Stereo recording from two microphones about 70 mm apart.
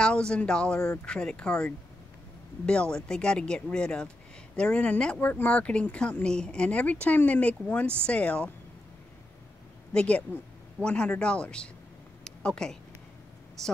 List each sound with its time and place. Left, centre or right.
0.0 s speech: centre
9.9 s speech: centre
12.3 s a sound: centre
13.6 s a woman's voice: centre